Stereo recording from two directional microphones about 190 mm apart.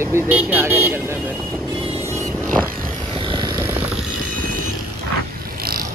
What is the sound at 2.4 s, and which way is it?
Vehicle, 50° right (ahead or behind).